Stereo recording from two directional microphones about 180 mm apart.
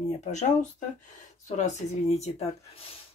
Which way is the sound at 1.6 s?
40° left (ahead or behind).